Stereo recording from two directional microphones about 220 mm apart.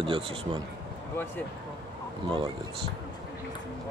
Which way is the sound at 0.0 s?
25° right (ahead or behind).